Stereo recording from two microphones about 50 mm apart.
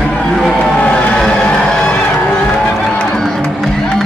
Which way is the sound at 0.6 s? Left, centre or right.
Left.